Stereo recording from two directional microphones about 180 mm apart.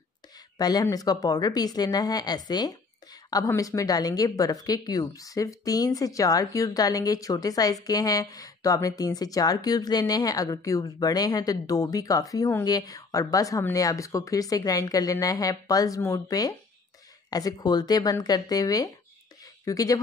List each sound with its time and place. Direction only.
0.6 s speech: 20° left (ahead or behind)